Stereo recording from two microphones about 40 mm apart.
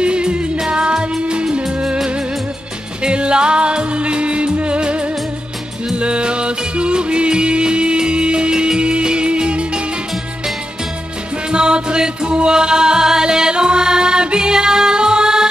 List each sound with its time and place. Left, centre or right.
0.0 s music: right
3.0 s music: right
5.9 s music: right
11.5 s music: right